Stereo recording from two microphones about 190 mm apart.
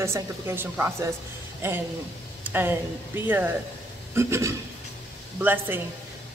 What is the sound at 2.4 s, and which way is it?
Speech, 10° right (ahead or behind).